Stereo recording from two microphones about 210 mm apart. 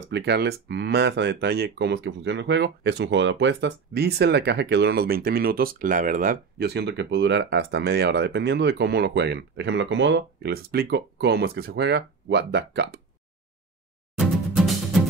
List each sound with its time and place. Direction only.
0.1 s speech: 50° right (ahead or behind)
14.1 s music: centre (ahead or behind)